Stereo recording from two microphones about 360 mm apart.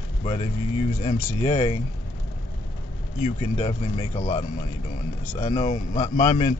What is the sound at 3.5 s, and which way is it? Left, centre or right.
Speech, centre.